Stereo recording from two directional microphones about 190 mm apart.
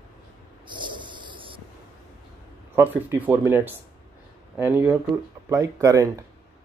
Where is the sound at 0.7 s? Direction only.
25° right (ahead or behind).